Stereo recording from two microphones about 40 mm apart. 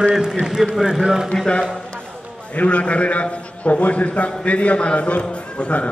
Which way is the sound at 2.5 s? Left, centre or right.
Left.